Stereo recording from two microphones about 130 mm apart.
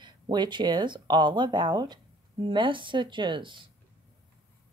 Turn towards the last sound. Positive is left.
turn(degrees=-40)  # may be behind; listen again after turning